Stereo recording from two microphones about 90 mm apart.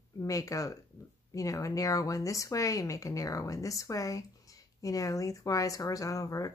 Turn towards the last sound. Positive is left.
turn(degrees=40)  # may be behind; listen again after turning